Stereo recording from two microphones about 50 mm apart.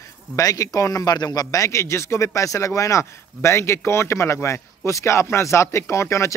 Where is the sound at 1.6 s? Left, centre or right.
Left.